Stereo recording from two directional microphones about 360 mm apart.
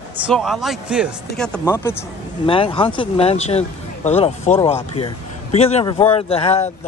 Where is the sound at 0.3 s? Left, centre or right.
Centre.